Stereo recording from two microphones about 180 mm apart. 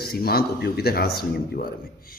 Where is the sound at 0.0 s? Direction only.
60° left (ahead or behind).